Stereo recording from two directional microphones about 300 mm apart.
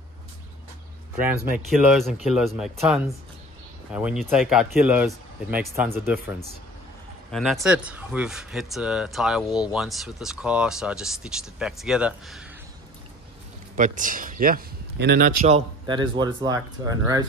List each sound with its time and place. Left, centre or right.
2.0 s speech: centre
13.7 s a man's voice: right